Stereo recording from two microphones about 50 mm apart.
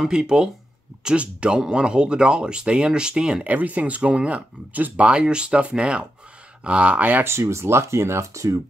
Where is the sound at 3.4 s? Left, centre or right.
Right.